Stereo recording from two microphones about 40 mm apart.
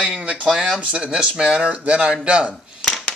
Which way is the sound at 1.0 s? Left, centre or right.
Right.